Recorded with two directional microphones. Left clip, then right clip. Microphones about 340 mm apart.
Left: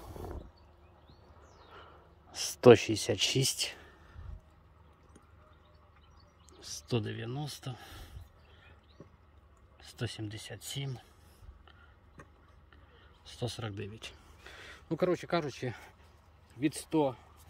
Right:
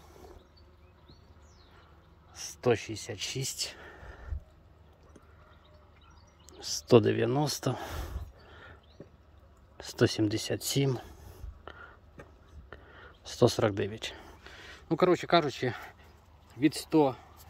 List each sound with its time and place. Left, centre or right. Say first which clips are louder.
2.3 s speech: left 8 dB; centre
6.6 s speech: right 14 dB; centre
9.8 s speech: right 14 dB; centre
13.2 s speech: right 15 dB; centre